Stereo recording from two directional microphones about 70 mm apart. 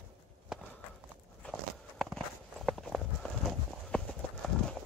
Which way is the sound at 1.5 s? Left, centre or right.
Centre.